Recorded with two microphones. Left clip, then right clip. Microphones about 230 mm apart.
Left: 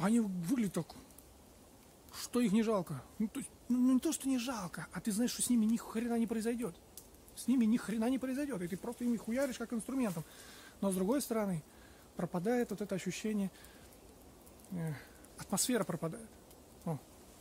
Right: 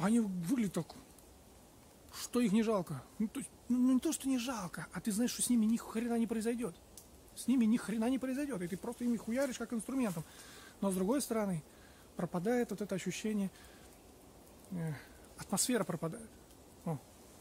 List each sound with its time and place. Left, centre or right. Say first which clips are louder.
0.0 s speech: even; centre
2.1 s speech: even; centre
14.8 s speech: even; centre